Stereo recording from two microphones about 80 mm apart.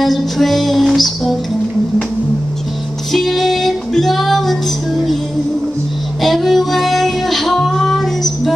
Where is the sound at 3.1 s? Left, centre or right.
Centre.